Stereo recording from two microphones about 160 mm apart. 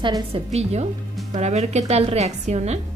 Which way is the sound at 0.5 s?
45° right (ahead or behind).